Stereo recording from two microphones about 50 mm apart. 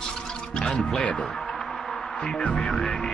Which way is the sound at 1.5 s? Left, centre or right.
Centre.